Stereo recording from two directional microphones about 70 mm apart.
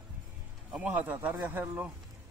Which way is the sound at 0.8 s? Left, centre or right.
Right.